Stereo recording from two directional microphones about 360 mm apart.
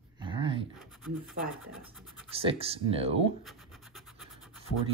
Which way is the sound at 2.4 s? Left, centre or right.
Centre.